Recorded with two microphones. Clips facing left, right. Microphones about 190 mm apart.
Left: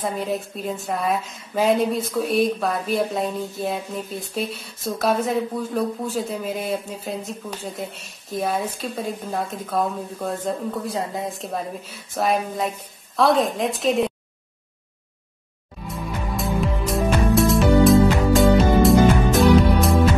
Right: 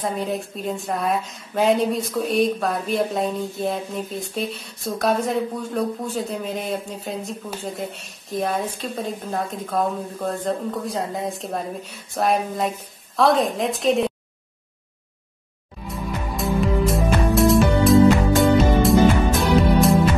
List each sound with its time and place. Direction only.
0.0 s a woman's voice: centre (ahead or behind)
15.9 s music: centre (ahead or behind)